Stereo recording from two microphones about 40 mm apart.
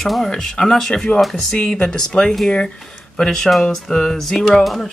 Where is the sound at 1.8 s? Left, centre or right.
Centre.